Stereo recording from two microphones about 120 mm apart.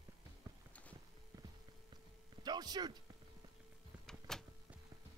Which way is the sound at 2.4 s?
35° right (ahead or behind).